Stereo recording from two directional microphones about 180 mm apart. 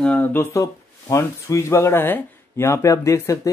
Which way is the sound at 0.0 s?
10° left (ahead or behind).